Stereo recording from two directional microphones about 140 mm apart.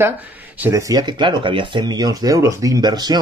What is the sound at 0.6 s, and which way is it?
Speech, 20° right (ahead or behind).